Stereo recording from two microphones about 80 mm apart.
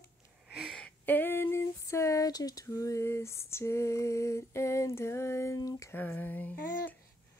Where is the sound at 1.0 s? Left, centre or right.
Left.